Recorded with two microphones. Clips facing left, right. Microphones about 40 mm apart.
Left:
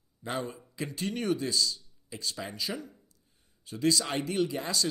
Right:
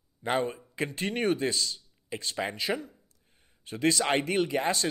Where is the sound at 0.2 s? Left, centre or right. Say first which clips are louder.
Right 6 dB; right.